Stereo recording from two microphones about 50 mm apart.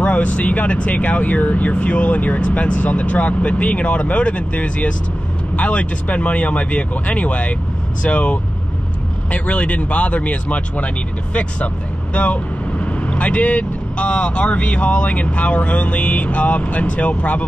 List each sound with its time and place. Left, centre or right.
0.0 s speech: left